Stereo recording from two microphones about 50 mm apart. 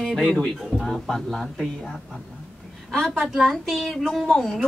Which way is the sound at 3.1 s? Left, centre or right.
Centre.